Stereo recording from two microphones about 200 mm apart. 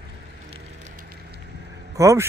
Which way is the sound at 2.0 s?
15° right (ahead or behind).